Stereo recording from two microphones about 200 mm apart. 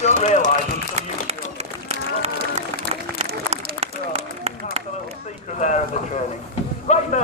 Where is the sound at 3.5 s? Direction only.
30° right (ahead or behind).